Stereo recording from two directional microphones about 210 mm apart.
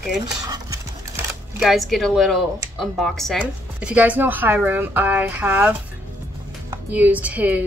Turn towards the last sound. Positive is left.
turn(degrees=-5)  # may be behind; listen again after turning